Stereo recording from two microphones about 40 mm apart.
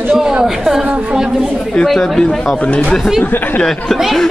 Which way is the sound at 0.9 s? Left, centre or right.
Right.